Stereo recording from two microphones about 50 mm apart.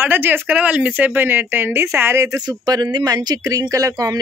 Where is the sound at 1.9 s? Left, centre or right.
Right.